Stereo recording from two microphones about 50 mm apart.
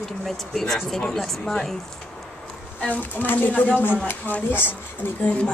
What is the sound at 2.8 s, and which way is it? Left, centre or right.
A woman's voice, left.